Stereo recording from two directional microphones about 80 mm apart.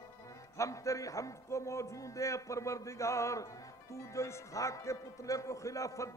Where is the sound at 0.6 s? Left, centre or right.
Left.